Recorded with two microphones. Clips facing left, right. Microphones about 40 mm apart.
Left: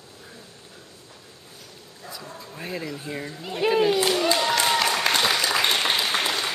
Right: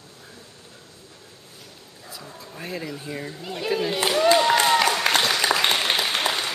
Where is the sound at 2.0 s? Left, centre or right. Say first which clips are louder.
Left 2 dB; centre.